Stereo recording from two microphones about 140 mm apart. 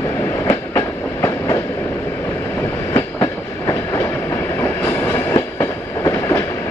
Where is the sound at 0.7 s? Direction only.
20° left (ahead or behind).